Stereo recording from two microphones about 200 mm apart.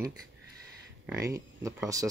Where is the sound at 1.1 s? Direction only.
15° right (ahead or behind).